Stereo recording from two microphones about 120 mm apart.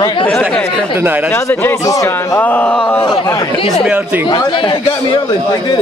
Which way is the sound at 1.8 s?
30° left (ahead or behind).